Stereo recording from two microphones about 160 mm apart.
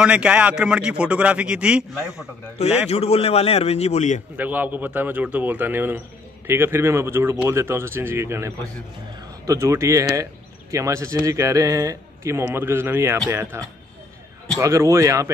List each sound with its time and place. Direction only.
0.0 s speech: 5° right (ahead or behind)
2.9 s a man's voice: 40° left (ahead or behind)
4.4 s speech: 10° right (ahead or behind)